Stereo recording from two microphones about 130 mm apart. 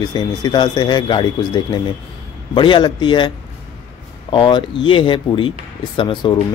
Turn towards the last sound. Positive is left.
turn(degrees=35)  # may be behind; listen again after turning